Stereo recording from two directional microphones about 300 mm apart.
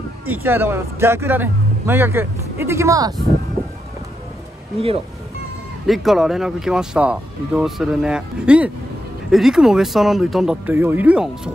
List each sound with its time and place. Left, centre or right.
0.3 s speech: centre
4.7 s speech: centre
5.9 s speech: centre